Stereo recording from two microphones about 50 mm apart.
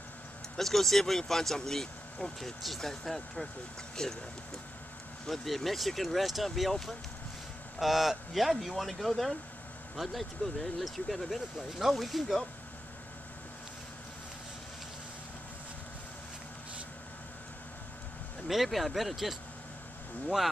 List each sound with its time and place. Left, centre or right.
0.6 s speech: centre
5.2 s speech: centre
18.5 s speech: centre